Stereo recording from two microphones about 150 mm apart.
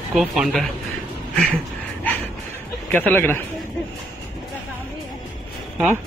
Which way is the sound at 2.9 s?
15° left (ahead or behind).